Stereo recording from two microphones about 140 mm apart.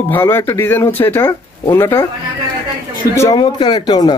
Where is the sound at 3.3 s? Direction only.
35° left (ahead or behind).